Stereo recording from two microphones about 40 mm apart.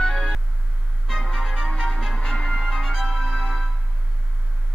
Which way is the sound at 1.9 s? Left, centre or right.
Centre.